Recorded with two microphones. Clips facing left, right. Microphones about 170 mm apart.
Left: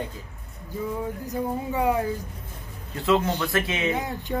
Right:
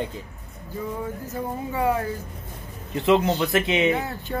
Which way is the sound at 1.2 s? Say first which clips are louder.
Left 2 dB; 15° left (ahead or behind).